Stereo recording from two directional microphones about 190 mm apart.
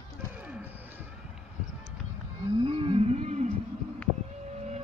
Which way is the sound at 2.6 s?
30° right (ahead or behind).